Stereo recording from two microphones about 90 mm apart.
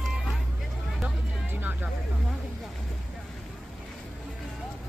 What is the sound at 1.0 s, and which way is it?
Music, 20° right (ahead or behind).